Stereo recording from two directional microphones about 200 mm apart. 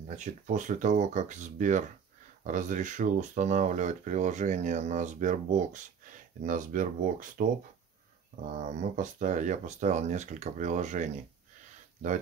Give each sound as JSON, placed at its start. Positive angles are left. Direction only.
{"t": 0.1, "sound": "speech", "side_deg": -35}
{"t": 8.6, "sound": "speech", "side_deg": -40}